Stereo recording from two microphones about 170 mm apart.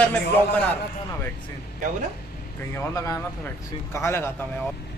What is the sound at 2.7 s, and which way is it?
Speech, 15° left (ahead or behind).